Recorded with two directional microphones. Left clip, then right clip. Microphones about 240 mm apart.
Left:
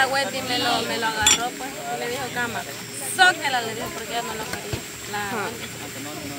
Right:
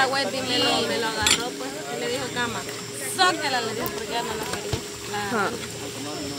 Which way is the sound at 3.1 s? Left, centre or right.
Centre.